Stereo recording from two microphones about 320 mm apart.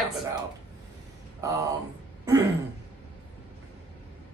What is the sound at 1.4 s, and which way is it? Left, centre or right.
Speech, centre.